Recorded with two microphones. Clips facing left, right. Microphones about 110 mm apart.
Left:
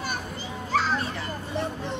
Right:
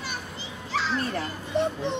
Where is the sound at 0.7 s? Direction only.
45° left (ahead or behind).